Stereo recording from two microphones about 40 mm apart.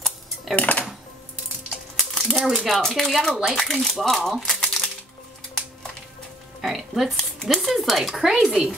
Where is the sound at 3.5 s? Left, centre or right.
Centre.